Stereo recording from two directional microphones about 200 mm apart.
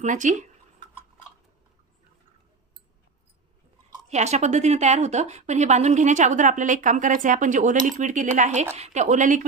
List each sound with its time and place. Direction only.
0.0 s speech: 40° right (ahead or behind)
4.1 s speech: 35° right (ahead or behind)